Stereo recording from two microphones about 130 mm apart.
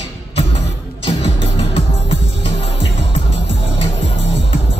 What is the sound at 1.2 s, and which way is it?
Music, 45° left (ahead or behind).